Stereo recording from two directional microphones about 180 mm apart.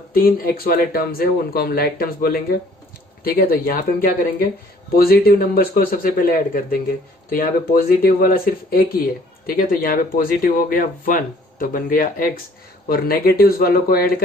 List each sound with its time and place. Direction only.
0.1 s speech: 55° left (ahead or behind)